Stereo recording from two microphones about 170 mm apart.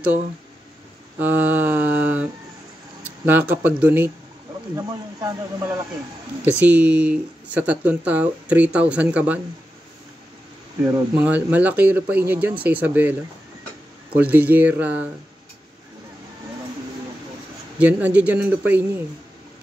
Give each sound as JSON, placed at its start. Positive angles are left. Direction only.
{"t": 1.2, "sound": "mantra", "side_deg": -10}
{"t": 3.3, "sound": "speech", "side_deg": -10}
{"t": 10.8, "sound": "speech", "side_deg": -15}
{"t": 14.1, "sound": "speech", "side_deg": -10}
{"t": 17.7, "sound": "speech", "side_deg": -10}